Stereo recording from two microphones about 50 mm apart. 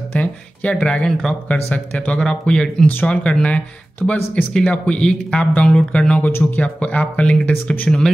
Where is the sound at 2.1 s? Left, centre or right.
Centre.